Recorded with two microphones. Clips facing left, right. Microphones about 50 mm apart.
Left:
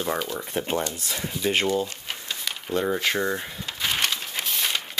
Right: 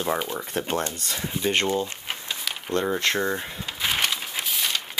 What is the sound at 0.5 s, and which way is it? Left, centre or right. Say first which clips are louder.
Speech: left 1 dB; centre.